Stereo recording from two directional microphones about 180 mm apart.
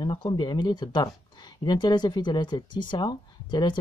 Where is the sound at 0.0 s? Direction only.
25° left (ahead or behind).